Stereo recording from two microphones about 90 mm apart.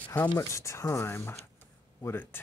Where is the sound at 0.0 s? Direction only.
20° left (ahead or behind).